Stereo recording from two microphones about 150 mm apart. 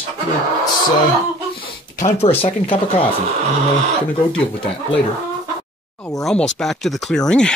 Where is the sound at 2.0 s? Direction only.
45° left (ahead or behind).